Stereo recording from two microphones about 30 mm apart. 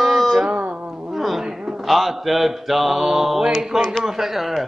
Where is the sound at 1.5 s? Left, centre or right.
Centre.